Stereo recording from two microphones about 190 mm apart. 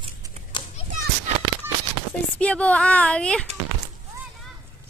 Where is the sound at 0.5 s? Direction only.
25° left (ahead or behind).